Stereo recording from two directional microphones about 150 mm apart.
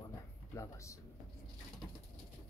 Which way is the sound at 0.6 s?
20° left (ahead or behind).